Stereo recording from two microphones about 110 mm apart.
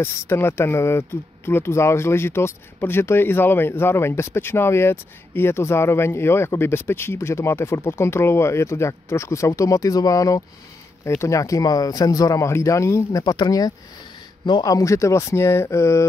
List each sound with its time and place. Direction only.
0.0 s speech: 20° left (ahead or behind)